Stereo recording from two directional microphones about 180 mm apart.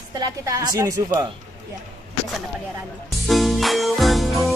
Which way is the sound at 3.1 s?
Centre (ahead or behind).